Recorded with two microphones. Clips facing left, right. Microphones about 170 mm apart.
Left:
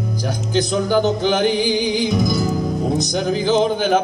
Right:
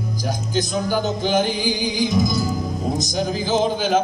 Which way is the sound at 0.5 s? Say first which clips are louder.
Left 5 dB; 65° left (ahead or behind).